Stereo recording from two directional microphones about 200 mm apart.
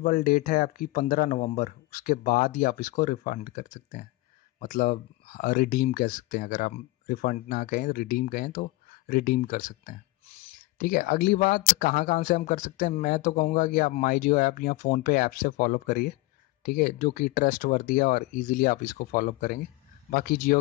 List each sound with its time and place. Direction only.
0.0 s a man's voice: 45° left (ahead or behind)
10.8 s a man's voice: 45° left (ahead or behind)